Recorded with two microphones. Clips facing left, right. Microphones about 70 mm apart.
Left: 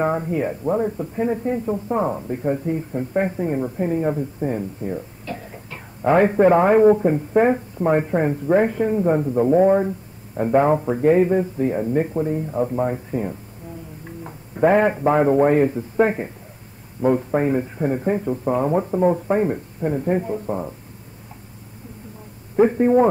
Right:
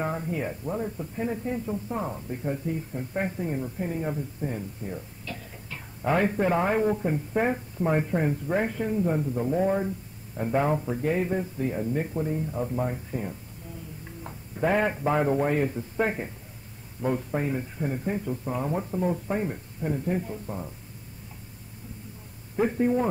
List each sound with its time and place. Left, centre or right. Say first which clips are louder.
0.0 s a man's voice: left 8 dB; left
22.6 s speech: left 9 dB; left